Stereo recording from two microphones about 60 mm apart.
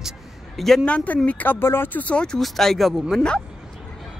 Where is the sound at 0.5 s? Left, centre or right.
Centre.